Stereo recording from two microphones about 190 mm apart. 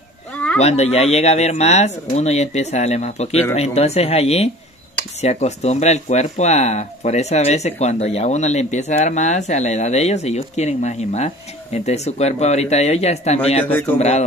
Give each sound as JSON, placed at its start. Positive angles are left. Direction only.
{"t": 0.6, "sound": "speech", "side_deg": 35}